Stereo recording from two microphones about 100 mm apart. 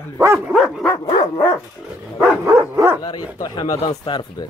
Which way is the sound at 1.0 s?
50° left (ahead or behind).